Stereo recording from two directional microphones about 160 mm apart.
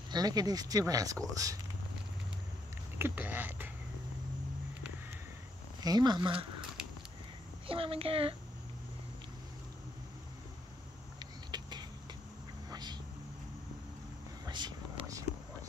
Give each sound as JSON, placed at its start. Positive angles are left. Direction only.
{"t": 0.1, "sound": "speech", "side_deg": -25}
{"t": 3.0, "sound": "speech", "side_deg": -10}
{"t": 5.8, "sound": "speech", "side_deg": -25}
{"t": 7.6, "sound": "a child's voice", "side_deg": -35}
{"t": 11.1, "sound": "a sound", "side_deg": -25}
{"t": 12.6, "sound": "vehicle", "side_deg": -25}
{"t": 14.4, "sound": "a sound", "side_deg": -25}